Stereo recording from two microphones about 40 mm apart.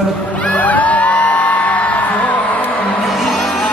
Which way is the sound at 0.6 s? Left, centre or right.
Left.